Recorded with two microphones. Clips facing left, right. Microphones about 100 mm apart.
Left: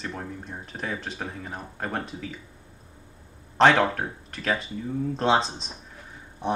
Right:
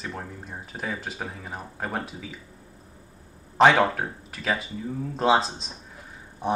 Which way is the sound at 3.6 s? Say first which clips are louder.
Right 1 dB; 5° right (ahead or behind).